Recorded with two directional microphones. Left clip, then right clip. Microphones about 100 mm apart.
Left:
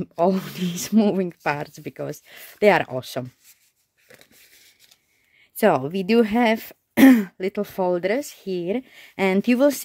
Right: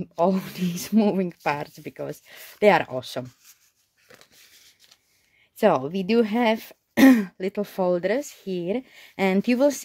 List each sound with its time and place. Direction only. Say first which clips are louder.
0.1 s speech: left 1 dB; 40° left (ahead or behind)
4.1 s a sound: left 1 dB; centre (ahead or behind)
5.6 s speech: left 1 dB; 35° left (ahead or behind)